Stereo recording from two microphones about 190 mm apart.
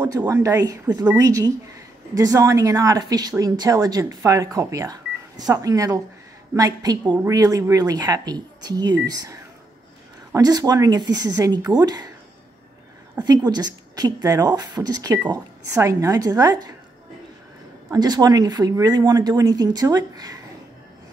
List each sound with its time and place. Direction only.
0.0 s a woman's voice: 20° right (ahead or behind)
13.2 s a woman's voice: 20° right (ahead or behind)
17.8 s a woman's voice: 20° right (ahead or behind)